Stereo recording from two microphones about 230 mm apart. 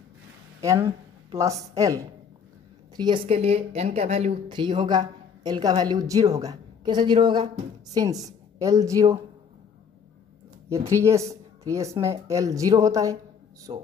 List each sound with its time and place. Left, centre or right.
0.6 s a sound: centre
1.8 s speech: centre
10.7 s speech: centre